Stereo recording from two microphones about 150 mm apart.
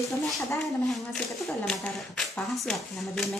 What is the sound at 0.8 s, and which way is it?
Speech, centre (ahead or behind).